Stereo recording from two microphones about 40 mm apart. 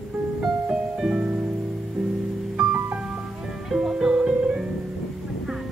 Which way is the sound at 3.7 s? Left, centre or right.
Centre.